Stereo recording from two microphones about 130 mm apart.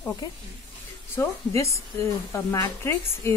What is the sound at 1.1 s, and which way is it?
Speech, 20° left (ahead or behind).